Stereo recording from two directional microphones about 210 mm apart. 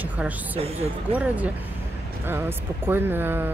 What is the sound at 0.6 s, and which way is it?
Speech, 25° right (ahead or behind).